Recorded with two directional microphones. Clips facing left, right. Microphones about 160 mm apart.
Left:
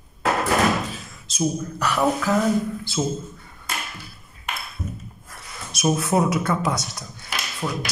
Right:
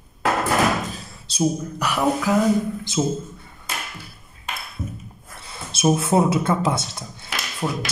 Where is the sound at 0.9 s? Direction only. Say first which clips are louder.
Right 3 dB; 35° right (ahead or behind).